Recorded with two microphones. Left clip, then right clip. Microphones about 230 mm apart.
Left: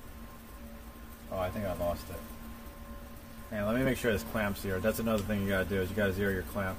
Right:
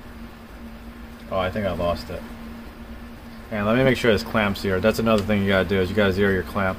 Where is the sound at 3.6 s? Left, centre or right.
Right.